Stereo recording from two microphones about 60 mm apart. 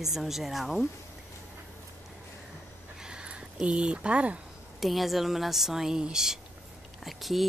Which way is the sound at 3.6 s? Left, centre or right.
Centre.